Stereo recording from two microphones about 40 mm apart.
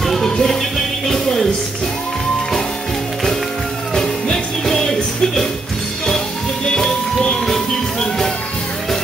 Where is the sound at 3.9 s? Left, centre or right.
Centre.